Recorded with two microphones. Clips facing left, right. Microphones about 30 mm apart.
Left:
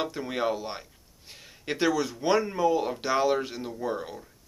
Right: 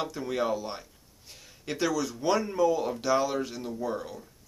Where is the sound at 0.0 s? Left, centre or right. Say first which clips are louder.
Left 1 dB; centre.